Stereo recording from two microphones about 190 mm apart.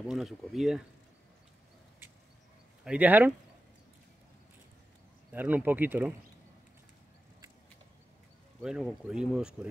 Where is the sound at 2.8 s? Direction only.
5° right (ahead or behind).